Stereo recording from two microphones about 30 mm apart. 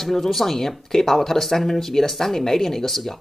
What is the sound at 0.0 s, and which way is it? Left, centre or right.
Speech, centre.